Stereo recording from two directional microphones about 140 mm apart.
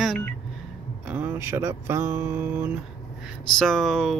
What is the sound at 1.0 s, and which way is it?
Speech, 10° right (ahead or behind).